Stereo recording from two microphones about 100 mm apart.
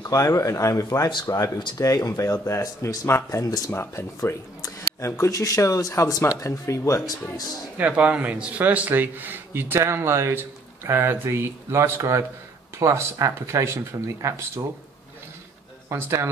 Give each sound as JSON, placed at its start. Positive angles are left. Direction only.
{"t": 0.0, "sound": "speech", "side_deg": 30}
{"t": 7.7, "sound": "speech", "side_deg": -15}
{"t": 15.9, "sound": "speech", "side_deg": -25}